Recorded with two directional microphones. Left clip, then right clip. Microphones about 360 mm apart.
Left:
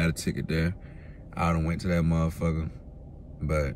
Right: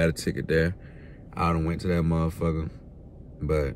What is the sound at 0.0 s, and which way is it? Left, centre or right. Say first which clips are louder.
A man's voice: right 5 dB; centre.